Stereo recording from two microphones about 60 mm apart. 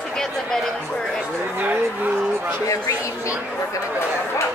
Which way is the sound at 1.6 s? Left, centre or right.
Right.